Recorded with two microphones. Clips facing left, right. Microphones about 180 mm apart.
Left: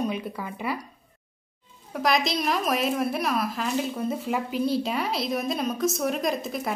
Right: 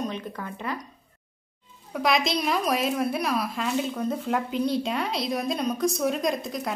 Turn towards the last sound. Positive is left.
turn(degrees=5)  # may be behind; listen again after turning